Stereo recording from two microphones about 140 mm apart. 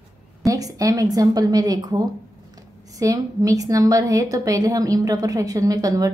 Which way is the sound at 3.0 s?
25° right (ahead or behind).